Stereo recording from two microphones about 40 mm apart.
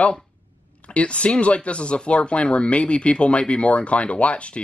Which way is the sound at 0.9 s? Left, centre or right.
Left.